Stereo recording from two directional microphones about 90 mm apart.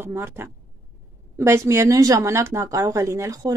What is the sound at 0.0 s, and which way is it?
Speech, 25° right (ahead or behind).